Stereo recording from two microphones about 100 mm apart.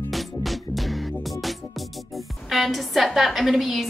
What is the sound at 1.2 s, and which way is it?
Speech, centre (ahead or behind).